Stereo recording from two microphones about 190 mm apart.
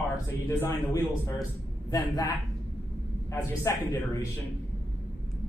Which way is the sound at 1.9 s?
20° left (ahead or behind).